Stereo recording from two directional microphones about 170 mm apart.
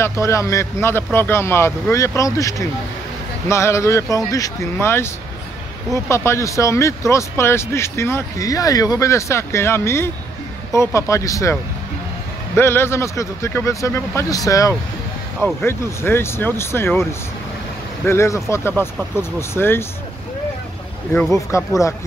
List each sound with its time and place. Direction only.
0.0 s speech: 15° left (ahead or behind)
12.5 s speech: 15° left (ahead or behind)
18.0 s speech: 15° left (ahead or behind)
21.1 s speech: 15° left (ahead or behind)